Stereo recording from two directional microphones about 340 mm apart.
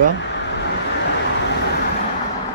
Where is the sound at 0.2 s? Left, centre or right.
Left.